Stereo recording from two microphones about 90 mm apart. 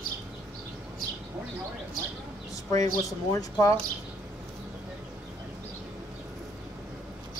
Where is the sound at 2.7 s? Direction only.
40° left (ahead or behind).